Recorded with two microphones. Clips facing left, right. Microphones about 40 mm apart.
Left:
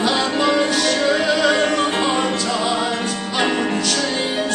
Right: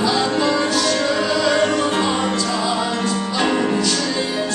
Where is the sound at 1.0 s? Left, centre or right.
Left.